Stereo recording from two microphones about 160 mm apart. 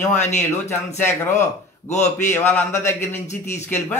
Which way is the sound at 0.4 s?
15° left (ahead or behind).